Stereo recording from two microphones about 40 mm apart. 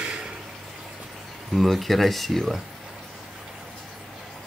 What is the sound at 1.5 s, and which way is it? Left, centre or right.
Speech, centre.